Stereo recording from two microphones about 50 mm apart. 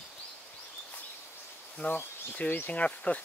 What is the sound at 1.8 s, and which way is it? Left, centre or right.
Speech, left.